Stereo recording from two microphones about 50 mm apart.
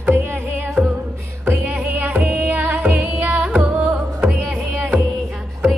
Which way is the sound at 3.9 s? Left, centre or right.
Centre.